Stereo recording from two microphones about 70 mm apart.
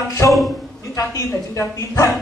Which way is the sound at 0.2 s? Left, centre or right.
Left.